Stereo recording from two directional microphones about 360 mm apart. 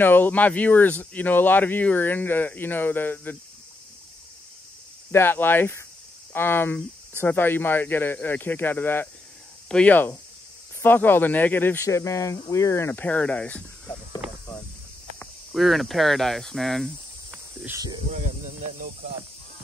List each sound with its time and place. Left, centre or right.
0.0 s speech: centre
5.1 s speech: centre
15.1 s speech: centre